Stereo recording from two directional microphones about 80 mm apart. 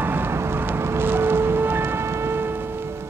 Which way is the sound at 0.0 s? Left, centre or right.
Right.